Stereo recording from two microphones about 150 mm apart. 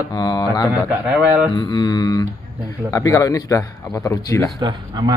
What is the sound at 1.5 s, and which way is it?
Speech, 25° left (ahead or behind).